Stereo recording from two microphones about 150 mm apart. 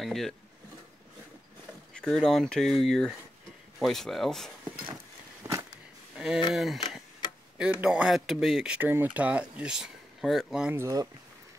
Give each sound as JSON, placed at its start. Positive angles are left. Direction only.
{"t": 0.0, "sound": "speech", "side_deg": 0}
{"t": 2.0, "sound": "speech", "side_deg": 5}
{"t": 5.4, "sound": "a sound", "side_deg": -20}
{"t": 6.1, "sound": "a sound", "side_deg": -5}
{"t": 6.5, "sound": "speech", "side_deg": 0}
{"t": 10.8, "sound": "speech", "side_deg": -25}